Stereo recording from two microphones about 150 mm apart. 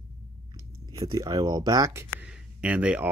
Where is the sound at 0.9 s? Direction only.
25° right (ahead or behind).